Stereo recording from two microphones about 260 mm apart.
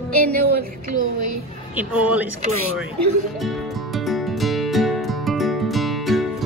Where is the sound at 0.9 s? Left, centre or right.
Right.